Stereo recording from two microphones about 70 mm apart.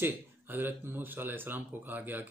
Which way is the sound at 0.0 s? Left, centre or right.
Right.